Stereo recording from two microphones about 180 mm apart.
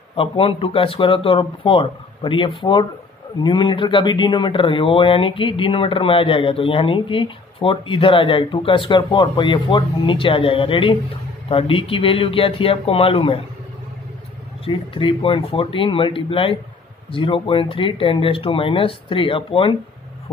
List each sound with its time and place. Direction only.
0.1 s speech: 30° left (ahead or behind)
14.6 s speech: 30° left (ahead or behind)